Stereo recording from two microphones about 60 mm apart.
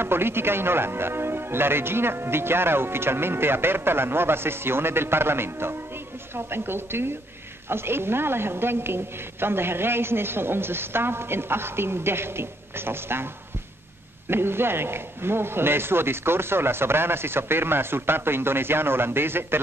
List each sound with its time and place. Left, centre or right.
0.0 s speech: right
14.3 s speech: right